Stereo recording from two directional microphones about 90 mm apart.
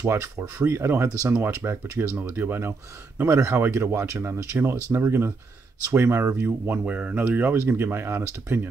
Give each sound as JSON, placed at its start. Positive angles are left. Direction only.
{"t": 0.0, "sound": "speech", "side_deg": -30}